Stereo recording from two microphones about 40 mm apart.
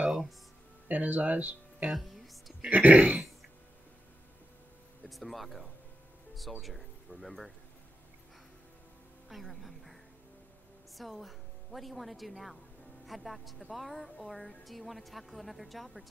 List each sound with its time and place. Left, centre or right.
0.0 s music: centre
0.8 s speech: right
1.9 s speech: centre
2.7 s speech: right
5.0 s a woman's voice: centre
9.3 s speech: centre
11.0 s a woman's voice: centre